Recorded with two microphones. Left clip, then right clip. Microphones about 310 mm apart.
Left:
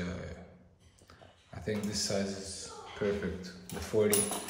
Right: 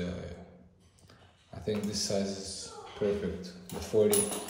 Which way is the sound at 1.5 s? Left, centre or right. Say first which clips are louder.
Right 2 dB; centre.